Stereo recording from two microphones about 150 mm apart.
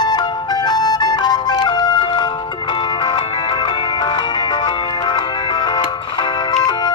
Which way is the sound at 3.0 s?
30° left (ahead or behind).